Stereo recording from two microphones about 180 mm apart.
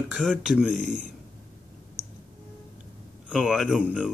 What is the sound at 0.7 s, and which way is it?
Speech, 45° right (ahead or behind).